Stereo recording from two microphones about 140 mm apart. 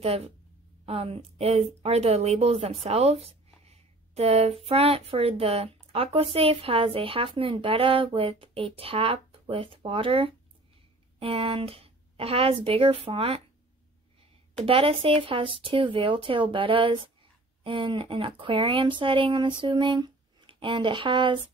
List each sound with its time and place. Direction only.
0.8 s a woman's voice: 45° right (ahead or behind)
14.6 s speech: 40° right (ahead or behind)